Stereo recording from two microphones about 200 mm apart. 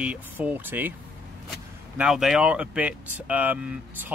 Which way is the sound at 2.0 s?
Centre (ahead or behind).